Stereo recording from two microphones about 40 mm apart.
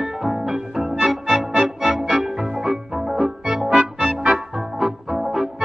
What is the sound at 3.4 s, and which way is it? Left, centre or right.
Music, centre.